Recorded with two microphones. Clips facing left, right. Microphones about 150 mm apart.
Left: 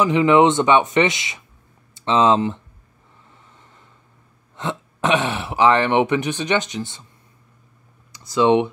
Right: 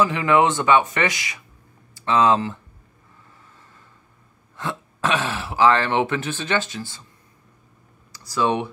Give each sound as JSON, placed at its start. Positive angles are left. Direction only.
{"t": 0.0, "sound": "speech", "side_deg": 20}
{"t": 4.6, "sound": "speech", "side_deg": 20}
{"t": 8.1, "sound": "speech", "side_deg": 20}